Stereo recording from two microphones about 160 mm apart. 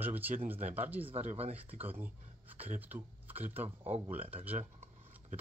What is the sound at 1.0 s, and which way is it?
Speech, 40° right (ahead or behind).